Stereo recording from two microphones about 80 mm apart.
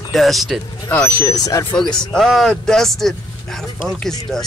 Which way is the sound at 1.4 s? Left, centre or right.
Left.